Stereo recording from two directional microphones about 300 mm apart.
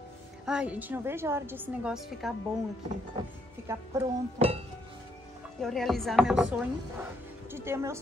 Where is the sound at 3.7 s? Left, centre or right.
Centre.